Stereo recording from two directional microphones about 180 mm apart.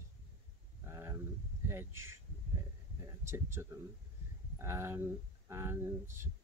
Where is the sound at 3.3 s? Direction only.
15° right (ahead or behind).